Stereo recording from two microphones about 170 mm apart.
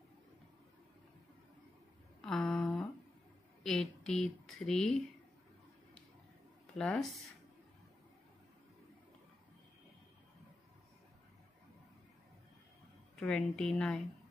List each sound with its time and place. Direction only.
2.2 s a sound: 5° left (ahead or behind)
3.6 s speech: 5° left (ahead or behind)
6.8 s speech: 5° left (ahead or behind)
13.1 s speech: 5° left (ahead or behind)